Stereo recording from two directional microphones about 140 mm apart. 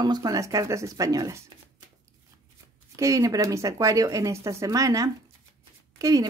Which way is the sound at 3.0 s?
25° right (ahead or behind).